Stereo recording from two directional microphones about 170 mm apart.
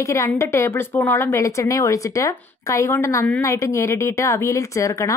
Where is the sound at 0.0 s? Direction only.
15° left (ahead or behind).